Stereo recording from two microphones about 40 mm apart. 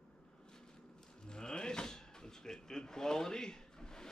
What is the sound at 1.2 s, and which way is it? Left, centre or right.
Sliding door, centre.